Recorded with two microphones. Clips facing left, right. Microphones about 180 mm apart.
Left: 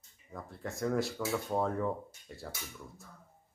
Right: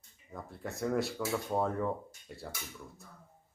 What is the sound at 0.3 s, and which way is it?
Speech, centre (ahead or behind).